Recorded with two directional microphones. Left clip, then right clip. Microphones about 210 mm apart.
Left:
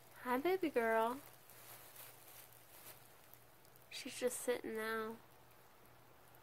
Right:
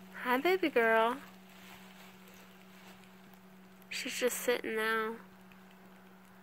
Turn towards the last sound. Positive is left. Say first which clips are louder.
# right 9 dB
turn(degrees=-25)  # may be behind; listen again after turning